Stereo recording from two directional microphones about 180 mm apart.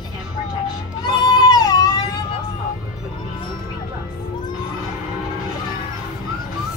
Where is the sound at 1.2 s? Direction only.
25° left (ahead or behind).